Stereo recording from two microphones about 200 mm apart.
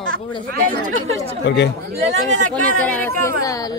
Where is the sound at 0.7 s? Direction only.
40° right (ahead or behind).